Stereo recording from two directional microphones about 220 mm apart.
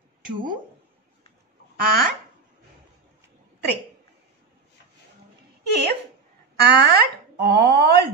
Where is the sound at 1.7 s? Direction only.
40° right (ahead or behind).